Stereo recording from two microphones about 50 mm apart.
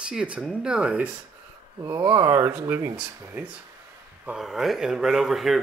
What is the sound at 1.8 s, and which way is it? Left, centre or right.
Speech, right.